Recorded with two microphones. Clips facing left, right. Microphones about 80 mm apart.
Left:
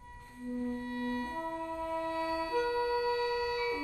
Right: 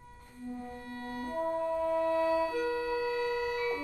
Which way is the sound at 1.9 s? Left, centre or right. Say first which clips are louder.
Right 5 dB; right.